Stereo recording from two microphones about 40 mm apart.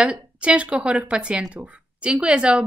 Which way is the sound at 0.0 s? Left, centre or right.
Right.